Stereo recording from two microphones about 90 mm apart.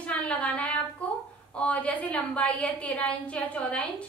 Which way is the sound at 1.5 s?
15° left (ahead or behind).